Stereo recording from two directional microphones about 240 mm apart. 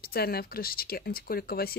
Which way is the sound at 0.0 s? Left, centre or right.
Left.